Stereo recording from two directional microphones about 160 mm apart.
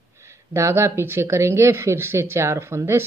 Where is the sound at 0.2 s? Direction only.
15° right (ahead or behind).